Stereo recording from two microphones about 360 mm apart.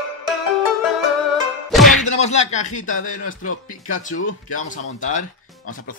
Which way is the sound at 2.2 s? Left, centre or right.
Centre.